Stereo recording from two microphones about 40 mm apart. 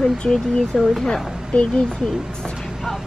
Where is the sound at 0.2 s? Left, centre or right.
Left.